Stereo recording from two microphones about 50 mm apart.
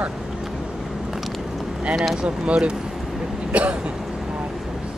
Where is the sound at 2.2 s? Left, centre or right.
Centre.